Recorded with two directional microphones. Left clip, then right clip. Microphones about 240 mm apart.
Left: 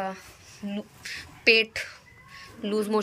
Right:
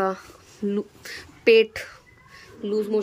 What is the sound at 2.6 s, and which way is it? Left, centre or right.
Speech, centre.